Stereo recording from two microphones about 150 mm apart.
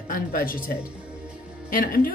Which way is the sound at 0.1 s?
70° left (ahead or behind).